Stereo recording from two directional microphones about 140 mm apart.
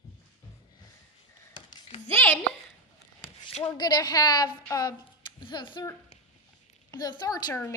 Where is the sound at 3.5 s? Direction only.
55° left (ahead or behind).